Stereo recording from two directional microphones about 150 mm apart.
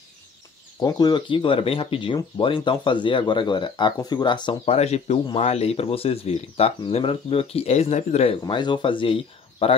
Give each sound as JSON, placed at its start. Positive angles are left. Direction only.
{"t": 0.7, "sound": "speech", "side_deg": 25}